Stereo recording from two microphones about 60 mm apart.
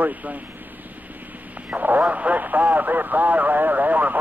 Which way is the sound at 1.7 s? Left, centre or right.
Right.